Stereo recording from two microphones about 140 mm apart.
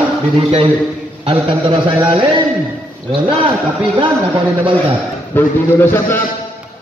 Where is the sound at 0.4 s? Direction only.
45° right (ahead or behind).